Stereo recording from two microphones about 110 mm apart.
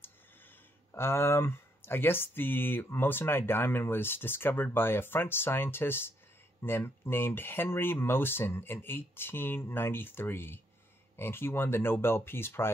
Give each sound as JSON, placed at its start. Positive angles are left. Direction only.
{"t": 0.9, "sound": "speech", "side_deg": 20}